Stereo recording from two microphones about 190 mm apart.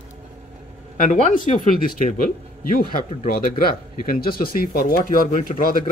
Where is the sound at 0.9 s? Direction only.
45° left (ahead or behind).